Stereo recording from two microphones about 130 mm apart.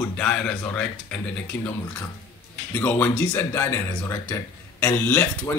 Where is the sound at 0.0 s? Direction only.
10° left (ahead or behind).